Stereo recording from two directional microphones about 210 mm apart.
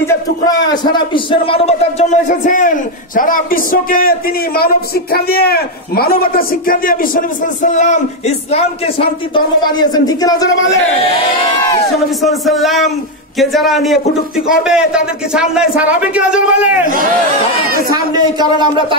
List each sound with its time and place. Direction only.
0.0 s a man's voice: 15° left (ahead or behind)
12.2 s a man's voice: centre (ahead or behind)
17.9 s speech: 20° right (ahead or behind)